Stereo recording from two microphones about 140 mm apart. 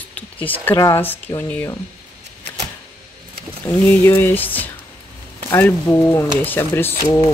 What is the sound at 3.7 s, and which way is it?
Speech, 15° left (ahead or behind).